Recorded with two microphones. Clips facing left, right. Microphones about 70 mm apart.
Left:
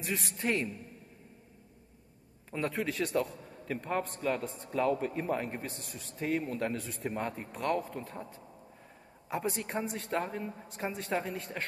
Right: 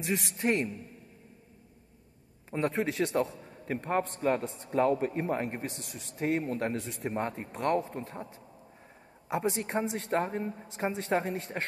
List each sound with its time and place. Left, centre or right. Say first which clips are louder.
0.4 s a man's voice: right 3 dB; right
2.5 s a man's voice: right 4 dB; right
5.7 s a man's voice: right 1 dB; left
6.1 s a man's voice: right 3 dB; right
9.3 s a man's voice: right 4 dB; right